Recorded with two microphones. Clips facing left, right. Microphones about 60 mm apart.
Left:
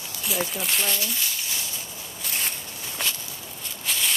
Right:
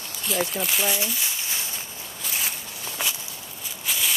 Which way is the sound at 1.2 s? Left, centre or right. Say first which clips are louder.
Right 1 dB; right.